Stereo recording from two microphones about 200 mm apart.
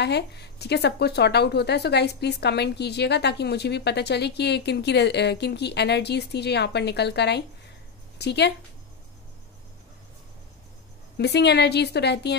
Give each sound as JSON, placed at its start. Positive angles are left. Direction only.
{"t": 0.0, "sound": "speech", "side_deg": 55}
{"t": 11.1, "sound": "speech", "side_deg": 55}